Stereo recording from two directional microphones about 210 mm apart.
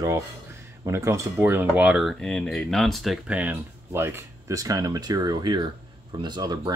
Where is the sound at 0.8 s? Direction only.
15° right (ahead or behind).